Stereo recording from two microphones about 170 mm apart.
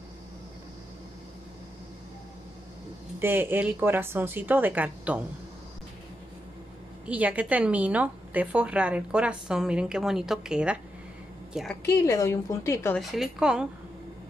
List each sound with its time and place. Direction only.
3.2 s a woman's voice: 10° right (ahead or behind)
7.1 s a woman's voice: 10° right (ahead or behind)
11.8 s a woman's voice: 15° left (ahead or behind)
12.9 s a woman's voice: centre (ahead or behind)